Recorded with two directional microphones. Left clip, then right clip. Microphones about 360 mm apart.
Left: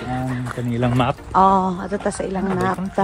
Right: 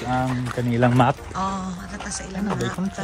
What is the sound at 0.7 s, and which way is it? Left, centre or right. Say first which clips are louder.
Speech: right 2 dB; right.